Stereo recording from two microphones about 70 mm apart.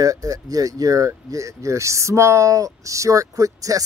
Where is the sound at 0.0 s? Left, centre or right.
Right.